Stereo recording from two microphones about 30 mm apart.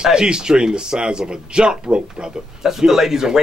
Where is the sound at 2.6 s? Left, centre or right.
Centre.